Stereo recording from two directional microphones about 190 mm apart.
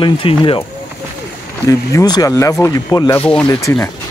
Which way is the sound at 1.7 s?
20° left (ahead or behind).